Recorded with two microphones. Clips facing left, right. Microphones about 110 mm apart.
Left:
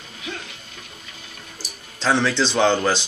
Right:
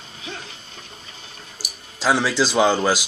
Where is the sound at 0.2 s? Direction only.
30° right (ahead or behind).